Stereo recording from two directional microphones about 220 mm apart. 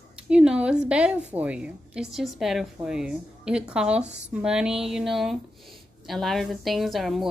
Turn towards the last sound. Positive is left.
turn(degrees=0)  # may be behind; listen again after turning